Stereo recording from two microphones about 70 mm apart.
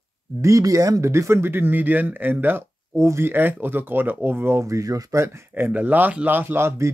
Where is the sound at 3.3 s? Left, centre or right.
Right.